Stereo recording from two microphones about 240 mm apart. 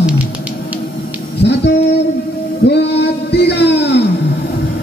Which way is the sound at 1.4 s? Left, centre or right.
Left.